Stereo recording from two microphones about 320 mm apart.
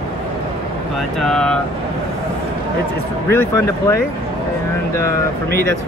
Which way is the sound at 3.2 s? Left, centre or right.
Centre.